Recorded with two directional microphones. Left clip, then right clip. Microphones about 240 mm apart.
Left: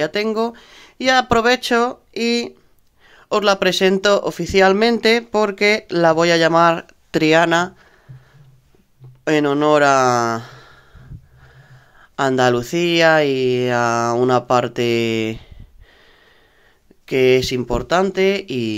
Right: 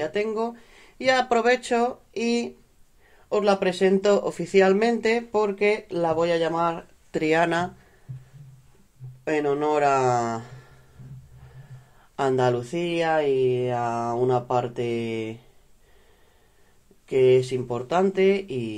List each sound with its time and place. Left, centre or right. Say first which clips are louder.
0.0 s speech: left 7 dB; left
9.2 s speech: left 7 dB; left
12.2 s speech: left 6 dB; left
17.0 s speech: left 4 dB; left